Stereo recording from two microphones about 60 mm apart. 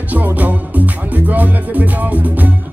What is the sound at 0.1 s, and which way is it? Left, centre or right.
Music, right.